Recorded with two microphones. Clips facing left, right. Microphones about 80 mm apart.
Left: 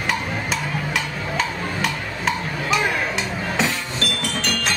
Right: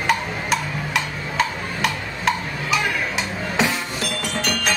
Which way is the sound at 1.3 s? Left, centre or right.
Centre.